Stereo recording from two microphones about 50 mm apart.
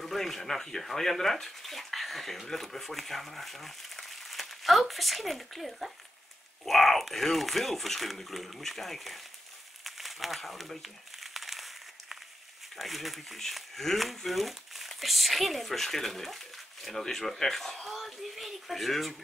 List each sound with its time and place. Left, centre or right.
0.0 s speech: centre
9.8 s crumpling: centre
12.7 s speech: centre